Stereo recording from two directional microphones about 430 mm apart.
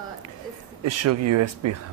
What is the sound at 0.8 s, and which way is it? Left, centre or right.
Speech, right.